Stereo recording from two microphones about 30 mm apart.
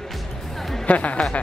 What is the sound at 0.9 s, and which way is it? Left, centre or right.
Speech, left.